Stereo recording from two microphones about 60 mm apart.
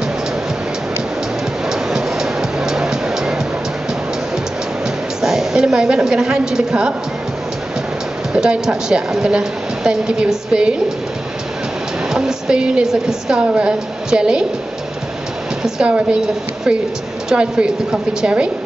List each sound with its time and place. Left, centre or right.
1.7 s music: centre
5.2 s a woman's voice: centre
8.3 s a woman's voice: centre
12.1 s a woman's voice: centre
15.6 s a woman's voice: centre
17.3 s a woman's voice: centre